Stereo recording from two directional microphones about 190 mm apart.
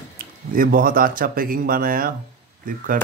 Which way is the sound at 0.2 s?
50° right (ahead or behind).